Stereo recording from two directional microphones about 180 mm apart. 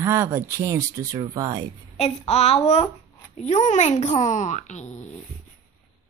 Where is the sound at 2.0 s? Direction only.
35° left (ahead or behind).